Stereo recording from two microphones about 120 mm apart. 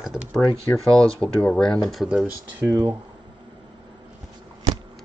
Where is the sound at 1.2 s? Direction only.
5° left (ahead or behind).